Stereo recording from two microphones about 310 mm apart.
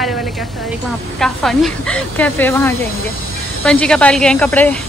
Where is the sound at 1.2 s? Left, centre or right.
Centre.